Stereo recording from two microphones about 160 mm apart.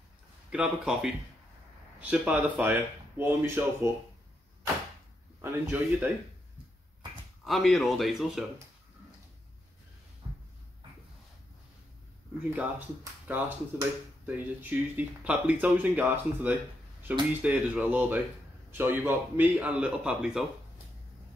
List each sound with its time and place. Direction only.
0.5 s speech: 5° right (ahead or behind)
5.4 s speech: 10° right (ahead or behind)
7.4 s speech: centre (ahead or behind)
10.2 s a sound: 35° right (ahead or behind)
13.3 s speech: 10° right (ahead or behind)